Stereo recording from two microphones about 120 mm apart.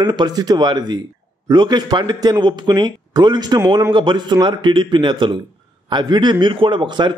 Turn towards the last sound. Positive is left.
turn(degrees=-40)  # may be behind; listen again after turning